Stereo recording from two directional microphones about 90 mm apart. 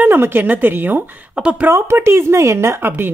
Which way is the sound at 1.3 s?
10° right (ahead or behind).